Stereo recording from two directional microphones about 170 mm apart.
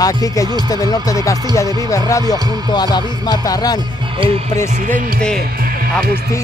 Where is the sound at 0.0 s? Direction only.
20° left (ahead or behind).